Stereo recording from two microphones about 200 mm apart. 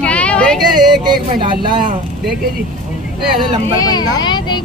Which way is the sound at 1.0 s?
20° right (ahead or behind).